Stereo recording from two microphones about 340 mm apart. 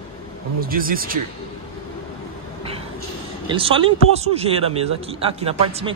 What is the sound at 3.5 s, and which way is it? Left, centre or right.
Speech, centre.